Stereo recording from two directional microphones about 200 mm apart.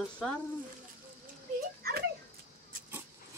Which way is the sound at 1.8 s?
50° right (ahead or behind).